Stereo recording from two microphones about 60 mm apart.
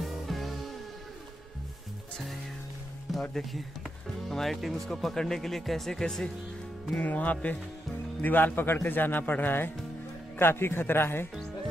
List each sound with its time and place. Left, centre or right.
0.0 s music: centre
3.1 s speech: centre
7.0 s music: left
8.2 s speech: left